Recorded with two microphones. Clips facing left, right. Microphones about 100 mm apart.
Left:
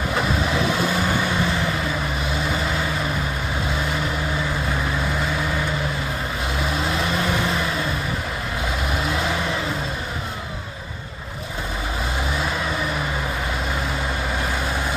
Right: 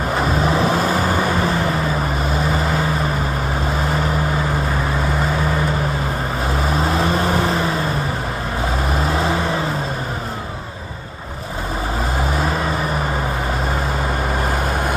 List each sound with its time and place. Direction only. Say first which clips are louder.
0.2 s vehicle: right 5 dB; 40° right (ahead or behind)
6.5 s vehicle: right 5 dB; 40° right (ahead or behind)
8.9 s vehicle: right 4 dB; 35° right (ahead or behind)